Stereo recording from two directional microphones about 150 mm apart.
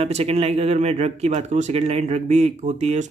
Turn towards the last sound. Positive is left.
turn(degrees=-50)  # may be behind; listen again after turning